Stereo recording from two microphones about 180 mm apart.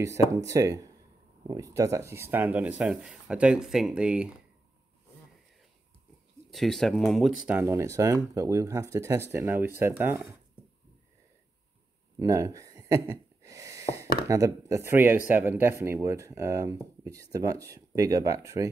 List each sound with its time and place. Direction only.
0.0 s speech: 15° right (ahead or behind)
6.5 s speech: centre (ahead or behind)
12.2 s a sound: 20° right (ahead or behind)
15.2 s speech: 10° right (ahead or behind)